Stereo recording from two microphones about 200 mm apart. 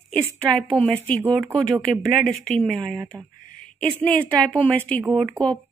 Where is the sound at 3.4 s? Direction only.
45° left (ahead or behind).